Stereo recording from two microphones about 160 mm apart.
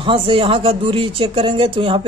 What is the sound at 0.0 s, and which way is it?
Speech, 35° right (ahead or behind).